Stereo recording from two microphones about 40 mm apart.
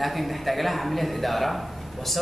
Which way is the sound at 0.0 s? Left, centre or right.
Centre.